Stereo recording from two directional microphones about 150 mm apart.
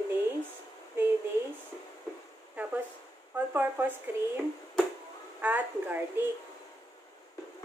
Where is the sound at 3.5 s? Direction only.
15° right (ahead or behind).